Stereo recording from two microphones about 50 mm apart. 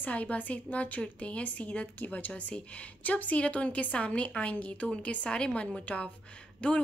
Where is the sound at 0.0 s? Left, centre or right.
Left.